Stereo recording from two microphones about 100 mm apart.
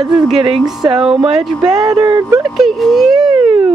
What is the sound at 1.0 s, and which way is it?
Speech, 70° right (ahead or behind).